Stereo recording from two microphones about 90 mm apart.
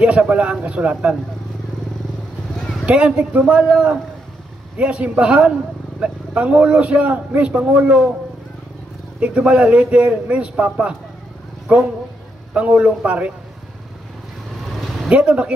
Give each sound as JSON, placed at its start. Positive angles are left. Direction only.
{"t": 0.0, "sound": "a man's voice", "side_deg": -15}
{"t": 2.8, "sound": "a man's voice", "side_deg": -15}
{"t": 9.2, "sound": "a man's voice", "side_deg": -10}
{"t": 14.6, "sound": "vehicle", "side_deg": 0}
{"t": 15.0, "sound": "a man's voice", "side_deg": -10}